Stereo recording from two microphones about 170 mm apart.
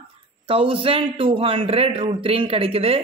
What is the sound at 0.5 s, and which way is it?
Speech, 30° right (ahead or behind).